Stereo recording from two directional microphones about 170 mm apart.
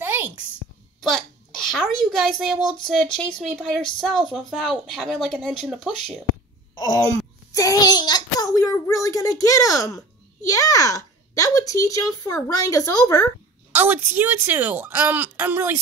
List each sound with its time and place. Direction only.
0.0 s a sound: 10° right (ahead or behind)
1.7 s a woman's voice: centre (ahead or behind)
6.7 s a child's voice: 20° left (ahead or behind)
13.7 s speech: 10° right (ahead or behind)